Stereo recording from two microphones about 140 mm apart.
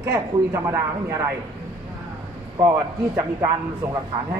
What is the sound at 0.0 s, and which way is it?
A man's voice, 20° right (ahead or behind).